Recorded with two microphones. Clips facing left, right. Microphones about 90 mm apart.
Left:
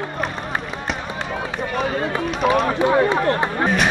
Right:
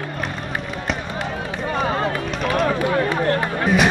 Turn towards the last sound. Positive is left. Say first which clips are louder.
# left 1 dB
turn(degrees=30)  # may be behind; listen again after turning